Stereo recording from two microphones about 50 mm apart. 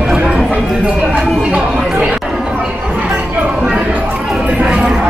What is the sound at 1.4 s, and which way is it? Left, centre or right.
Chatter, right.